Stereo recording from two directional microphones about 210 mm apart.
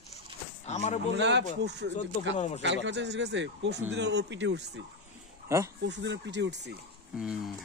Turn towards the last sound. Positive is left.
turn(degrees=0)  # may be behind; listen again after turning